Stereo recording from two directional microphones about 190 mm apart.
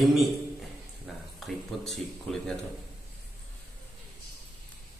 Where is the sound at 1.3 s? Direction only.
Centre (ahead or behind).